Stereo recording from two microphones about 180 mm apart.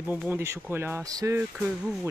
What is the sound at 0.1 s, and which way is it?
Speech, 10° right (ahead or behind).